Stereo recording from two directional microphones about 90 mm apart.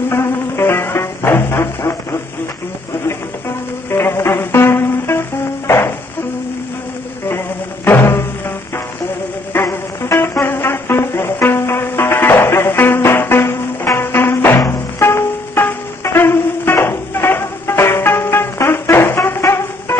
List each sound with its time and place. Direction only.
0.1 s music: 25° left (ahead or behind)
3.9 s music: 25° left (ahead or behind)
5.7 s insect: 30° left (ahead or behind)
7.2 s music: 25° left (ahead or behind)